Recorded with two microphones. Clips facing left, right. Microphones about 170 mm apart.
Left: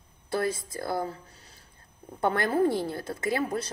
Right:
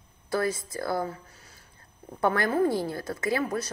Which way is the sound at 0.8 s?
25° left (ahead or behind).